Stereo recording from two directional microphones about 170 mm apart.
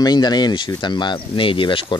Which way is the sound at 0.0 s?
25° left (ahead or behind).